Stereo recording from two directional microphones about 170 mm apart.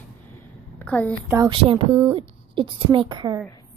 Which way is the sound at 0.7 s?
10° left (ahead or behind).